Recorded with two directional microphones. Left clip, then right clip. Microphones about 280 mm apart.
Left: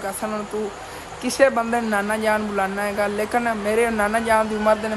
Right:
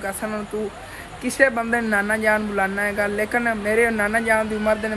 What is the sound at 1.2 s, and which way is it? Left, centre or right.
Speech, centre.